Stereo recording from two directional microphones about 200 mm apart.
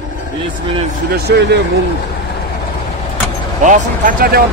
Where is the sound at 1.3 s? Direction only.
55° right (ahead or behind).